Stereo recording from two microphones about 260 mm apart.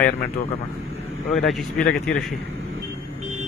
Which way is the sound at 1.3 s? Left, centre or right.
Centre.